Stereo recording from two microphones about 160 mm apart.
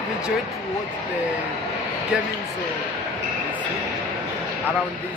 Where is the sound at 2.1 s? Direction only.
5° right (ahead or behind).